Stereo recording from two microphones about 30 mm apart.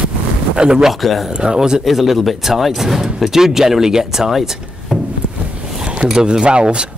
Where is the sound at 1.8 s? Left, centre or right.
Centre.